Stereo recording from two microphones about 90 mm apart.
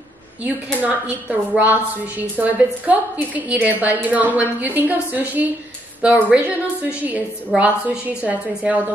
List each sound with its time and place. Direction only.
0.7 s a woman's voice: 15° right (ahead or behind)